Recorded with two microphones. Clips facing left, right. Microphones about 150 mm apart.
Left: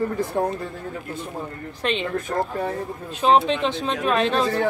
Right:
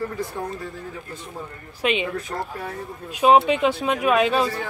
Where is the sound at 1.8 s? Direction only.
10° right (ahead or behind).